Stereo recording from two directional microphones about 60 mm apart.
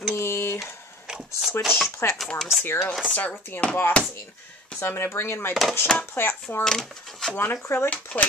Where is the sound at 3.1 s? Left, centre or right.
Left.